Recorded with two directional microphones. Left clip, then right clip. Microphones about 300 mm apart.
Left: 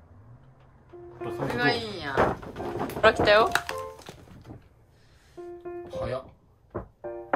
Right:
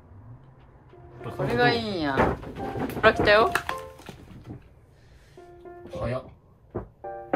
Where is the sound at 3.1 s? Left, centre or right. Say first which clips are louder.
Right 1 dB; centre.